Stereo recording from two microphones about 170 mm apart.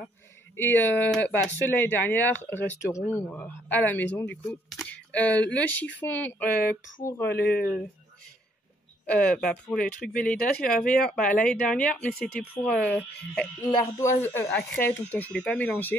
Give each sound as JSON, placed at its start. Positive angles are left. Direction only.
{"t": 0.6, "sound": "speech", "side_deg": 10}
{"t": 7.3, "sound": "speech", "side_deg": 65}
{"t": 9.0, "sound": "speech", "side_deg": 5}
{"t": 13.6, "sound": "speech", "side_deg": 20}